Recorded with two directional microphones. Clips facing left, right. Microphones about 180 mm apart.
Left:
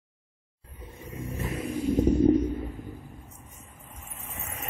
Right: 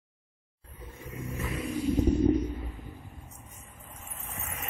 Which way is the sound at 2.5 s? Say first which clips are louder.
Left 6 dB; 20° left (ahead or behind).